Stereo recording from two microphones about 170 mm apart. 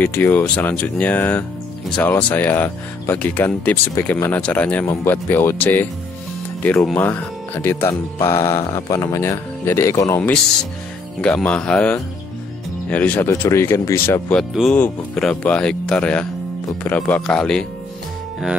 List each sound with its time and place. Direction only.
0.0 s speech: 10° left (ahead or behind)
14.5 s speech: centre (ahead or behind)